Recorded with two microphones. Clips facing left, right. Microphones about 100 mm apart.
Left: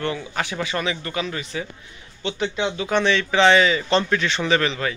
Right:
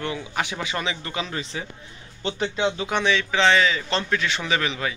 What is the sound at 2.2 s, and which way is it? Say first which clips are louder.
Speech: even; 35° right (ahead or behind).